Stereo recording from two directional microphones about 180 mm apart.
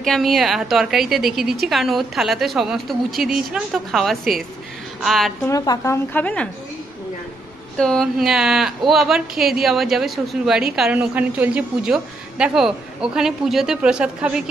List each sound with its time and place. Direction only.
0.0 s a woman's voice: centre (ahead or behind)
5.5 s a woman's voice: 20° left (ahead or behind)
6.1 s a woman's voice: 10° left (ahead or behind)
7.7 s a woman's voice: 5° left (ahead or behind)